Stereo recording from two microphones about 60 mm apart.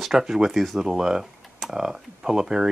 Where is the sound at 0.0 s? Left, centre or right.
Centre.